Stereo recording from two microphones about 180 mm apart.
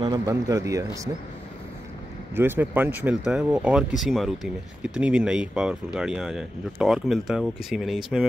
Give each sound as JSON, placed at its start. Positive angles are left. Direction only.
{"t": 0.0, "sound": "speech", "side_deg": -20}
{"t": 2.3, "sound": "speech", "side_deg": -10}